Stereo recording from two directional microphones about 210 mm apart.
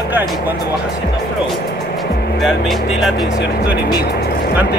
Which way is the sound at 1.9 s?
Centre (ahead or behind).